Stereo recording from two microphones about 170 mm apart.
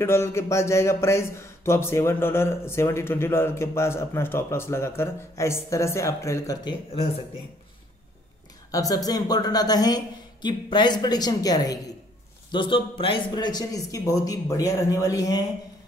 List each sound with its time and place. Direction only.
0.0 s speech: 15° left (ahead or behind)
8.7 s speech: 20° left (ahead or behind)